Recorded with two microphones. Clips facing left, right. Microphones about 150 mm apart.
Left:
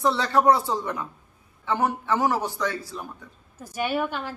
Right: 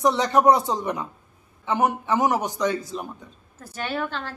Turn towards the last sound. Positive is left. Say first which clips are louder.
# left 2 dB
turn(degrees=10)  # may be behind; listen again after turning